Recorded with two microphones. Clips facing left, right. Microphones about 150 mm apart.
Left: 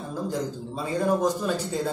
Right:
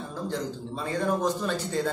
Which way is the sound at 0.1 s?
10° left (ahead or behind).